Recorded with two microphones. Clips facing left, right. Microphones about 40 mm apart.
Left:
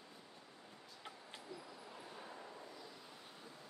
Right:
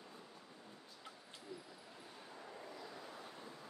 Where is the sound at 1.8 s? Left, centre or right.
Centre.